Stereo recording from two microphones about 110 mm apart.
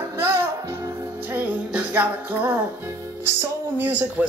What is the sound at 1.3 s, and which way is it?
Music, 15° right (ahead or behind).